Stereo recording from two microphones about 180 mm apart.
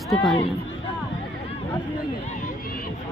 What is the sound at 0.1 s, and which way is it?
Speech, centre (ahead or behind).